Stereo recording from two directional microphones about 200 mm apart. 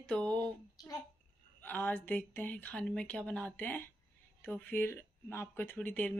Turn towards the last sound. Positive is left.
turn(degrees=5)  # may be behind; listen again after turning